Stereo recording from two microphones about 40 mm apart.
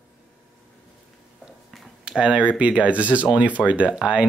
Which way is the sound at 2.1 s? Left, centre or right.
Right.